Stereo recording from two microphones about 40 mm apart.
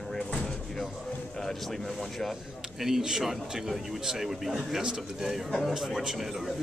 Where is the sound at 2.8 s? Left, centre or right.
Centre.